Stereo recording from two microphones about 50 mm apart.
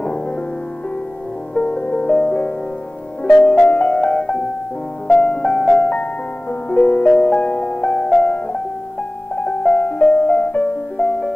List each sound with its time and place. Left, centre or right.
1.5 s music: left
9.3 s music: left